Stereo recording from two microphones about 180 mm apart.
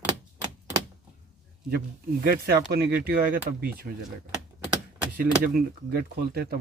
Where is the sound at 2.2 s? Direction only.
55° right (ahead or behind).